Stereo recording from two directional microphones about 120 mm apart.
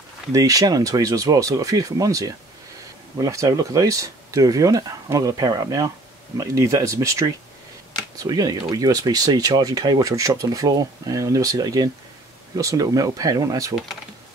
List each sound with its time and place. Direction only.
0.3 s speech: 30° right (ahead or behind)